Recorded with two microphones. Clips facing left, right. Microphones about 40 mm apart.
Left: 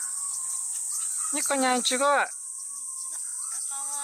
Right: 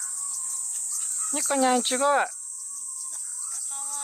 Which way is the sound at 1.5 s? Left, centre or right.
Left.